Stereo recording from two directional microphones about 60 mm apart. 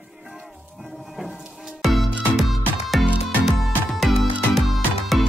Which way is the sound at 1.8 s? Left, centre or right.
Centre.